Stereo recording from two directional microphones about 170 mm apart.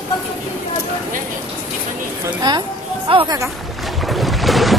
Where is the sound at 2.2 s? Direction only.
25° right (ahead or behind).